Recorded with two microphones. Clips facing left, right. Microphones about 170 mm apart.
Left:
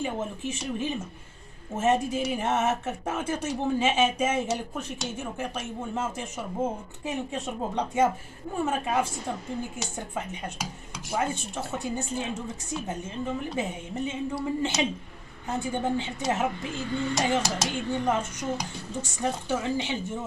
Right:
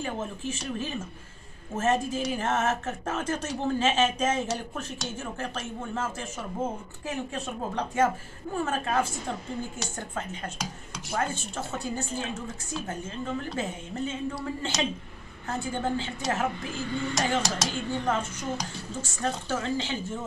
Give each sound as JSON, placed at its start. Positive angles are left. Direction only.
{"t": 0.0, "sound": "speech", "side_deg": 15}